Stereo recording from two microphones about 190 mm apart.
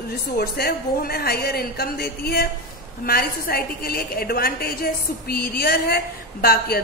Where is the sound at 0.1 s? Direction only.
55° left (ahead or behind).